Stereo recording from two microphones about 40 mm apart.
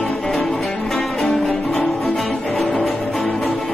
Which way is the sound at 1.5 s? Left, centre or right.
Centre.